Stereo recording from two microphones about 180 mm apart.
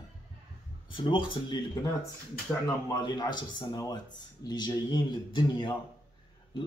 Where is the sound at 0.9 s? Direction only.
25° left (ahead or behind).